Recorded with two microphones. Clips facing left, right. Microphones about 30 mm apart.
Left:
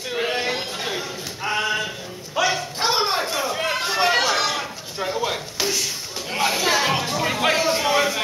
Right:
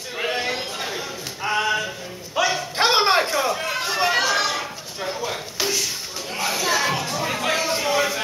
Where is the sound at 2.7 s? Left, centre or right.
Right.